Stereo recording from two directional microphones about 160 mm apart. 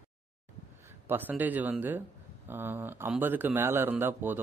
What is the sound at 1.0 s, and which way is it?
Speech, 10° right (ahead or behind).